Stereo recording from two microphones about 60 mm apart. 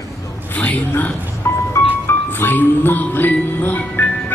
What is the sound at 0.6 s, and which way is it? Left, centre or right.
Music, left.